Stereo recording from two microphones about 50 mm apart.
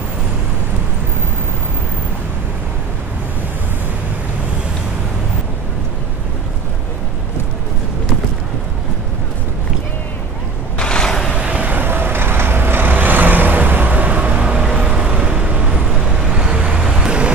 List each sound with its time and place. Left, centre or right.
10.8 s vehicle: centre
11.3 s vehicle: right
11.8 s vehicle: right; by 17.2 s centre